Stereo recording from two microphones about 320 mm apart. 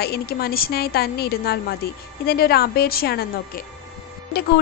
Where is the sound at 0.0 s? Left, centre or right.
Left.